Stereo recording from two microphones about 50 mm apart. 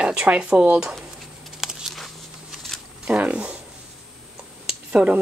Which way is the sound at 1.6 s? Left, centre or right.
Centre.